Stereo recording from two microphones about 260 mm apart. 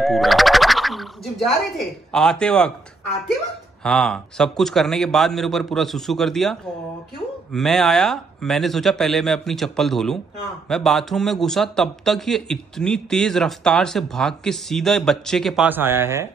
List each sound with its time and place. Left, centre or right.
0.0 s speech: centre
3.8 s a man's voice: centre